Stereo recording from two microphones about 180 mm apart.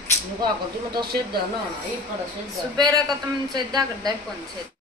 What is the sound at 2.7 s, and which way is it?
Speech, 25° right (ahead or behind).